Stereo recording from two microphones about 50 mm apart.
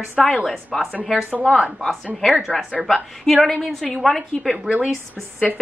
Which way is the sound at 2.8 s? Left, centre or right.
Centre.